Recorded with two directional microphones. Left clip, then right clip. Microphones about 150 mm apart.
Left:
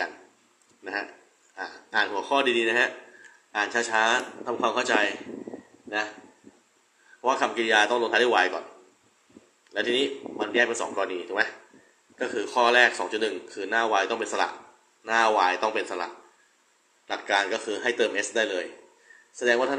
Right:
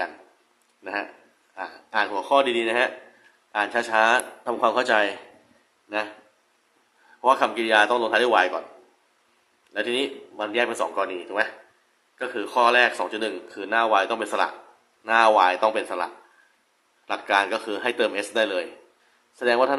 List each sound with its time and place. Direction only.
1.5 s speech: 15° right (ahead or behind)
7.2 s speech: 25° right (ahead or behind)
9.7 s speech: 20° right (ahead or behind)
17.1 s speech: 25° right (ahead or behind)